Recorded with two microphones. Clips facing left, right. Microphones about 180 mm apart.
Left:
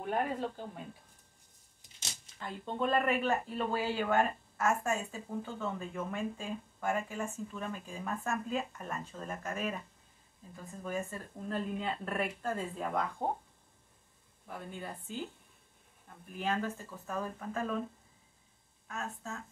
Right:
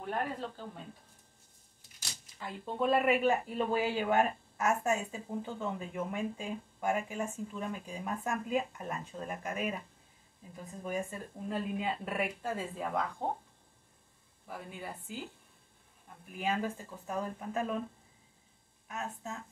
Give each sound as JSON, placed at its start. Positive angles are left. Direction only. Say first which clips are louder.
{"t": 0.1, "sound": "speech", "louder": "left 3 dB", "side_deg": 15}
{"t": 2.4, "sound": "speech", "louder": "right 2 dB", "side_deg": -5}
{"t": 14.5, "sound": "speech", "louder": "even", "side_deg": -10}
{"t": 16.3, "sound": "speech", "louder": "right 1 dB", "side_deg": -10}
{"t": 18.9, "sound": "speech", "louder": "right 1 dB", "side_deg": -20}